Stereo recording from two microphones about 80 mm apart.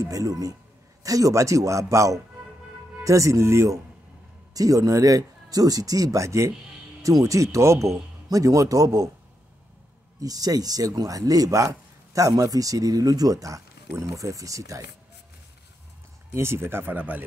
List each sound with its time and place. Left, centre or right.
0.0 s speech: right
10.2 s speech: right
16.3 s speech: right